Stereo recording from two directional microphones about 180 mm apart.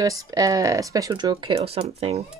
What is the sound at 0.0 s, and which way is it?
Speech, 20° right (ahead or behind).